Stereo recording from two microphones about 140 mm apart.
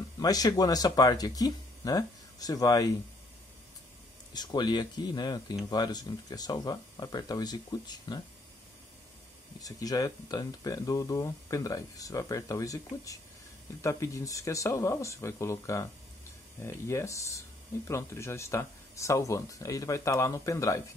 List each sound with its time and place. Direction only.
0.2 s speech: 25° left (ahead or behind)
4.3 s speech: 30° left (ahead or behind)
9.6 s speech: 25° left (ahead or behind)